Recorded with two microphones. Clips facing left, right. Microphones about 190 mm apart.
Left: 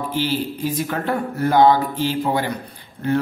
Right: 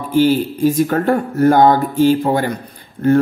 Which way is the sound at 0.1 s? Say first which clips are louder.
Right 12 dB; 45° right (ahead or behind).